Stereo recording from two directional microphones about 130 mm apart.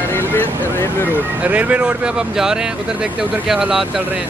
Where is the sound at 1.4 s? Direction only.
10° right (ahead or behind).